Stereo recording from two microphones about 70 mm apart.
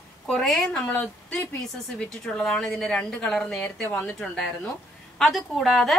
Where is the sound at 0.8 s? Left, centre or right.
Left.